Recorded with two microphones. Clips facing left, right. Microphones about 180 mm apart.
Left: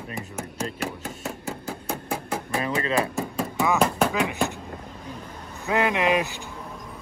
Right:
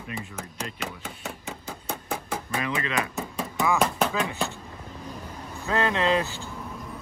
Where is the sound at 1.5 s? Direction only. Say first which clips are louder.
Left 4 dB; centre (ahead or behind).